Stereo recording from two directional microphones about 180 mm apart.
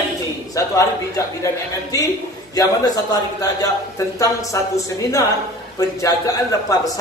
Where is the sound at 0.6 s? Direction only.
20° left (ahead or behind).